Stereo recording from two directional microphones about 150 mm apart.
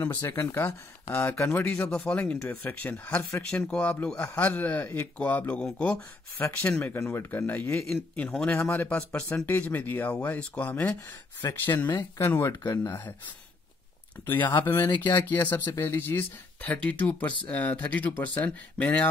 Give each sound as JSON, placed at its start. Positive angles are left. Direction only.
{"t": 0.2, "sound": "a man's voice", "side_deg": 20}
{"t": 14.6, "sound": "speech", "side_deg": 15}